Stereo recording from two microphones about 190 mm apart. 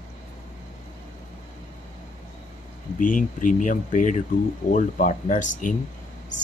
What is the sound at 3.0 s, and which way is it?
Speech, 45° left (ahead or behind).